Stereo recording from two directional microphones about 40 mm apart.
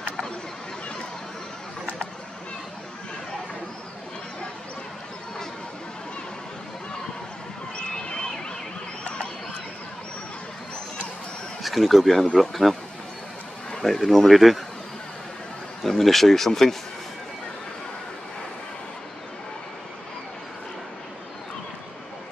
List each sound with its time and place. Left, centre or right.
7.7 s a sound: left
11.6 s speech: centre
13.8 s speech: centre
15.8 s speech: centre